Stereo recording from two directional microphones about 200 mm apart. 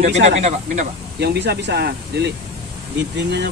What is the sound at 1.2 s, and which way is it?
Speech, 55° right (ahead or behind).